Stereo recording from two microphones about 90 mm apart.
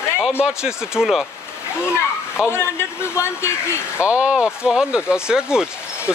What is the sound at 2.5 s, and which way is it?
Speech, 25° left (ahead or behind).